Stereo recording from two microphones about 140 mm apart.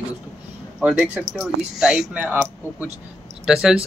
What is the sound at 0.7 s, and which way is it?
Speech, 5° right (ahead or behind).